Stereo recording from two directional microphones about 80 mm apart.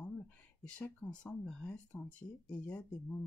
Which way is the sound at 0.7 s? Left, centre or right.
Centre.